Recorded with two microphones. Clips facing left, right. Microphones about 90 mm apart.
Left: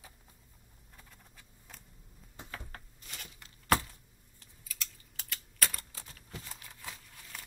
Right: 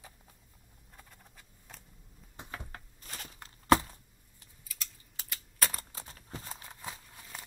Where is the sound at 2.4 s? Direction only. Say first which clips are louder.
Right 1 dB; 10° right (ahead or behind).